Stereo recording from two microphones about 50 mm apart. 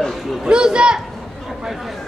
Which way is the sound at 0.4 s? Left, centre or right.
Centre.